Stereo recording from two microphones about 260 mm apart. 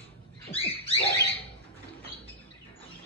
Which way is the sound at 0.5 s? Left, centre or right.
Left.